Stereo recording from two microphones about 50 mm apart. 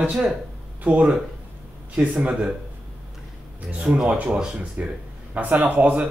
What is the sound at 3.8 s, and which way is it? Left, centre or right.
Speech, centre.